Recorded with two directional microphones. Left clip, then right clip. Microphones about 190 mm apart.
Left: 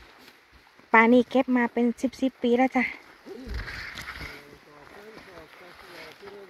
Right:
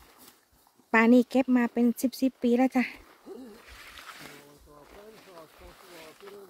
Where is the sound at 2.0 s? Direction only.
40° right (ahead or behind).